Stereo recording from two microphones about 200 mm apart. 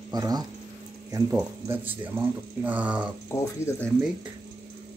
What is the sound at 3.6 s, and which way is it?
Speech, 15° left (ahead or behind).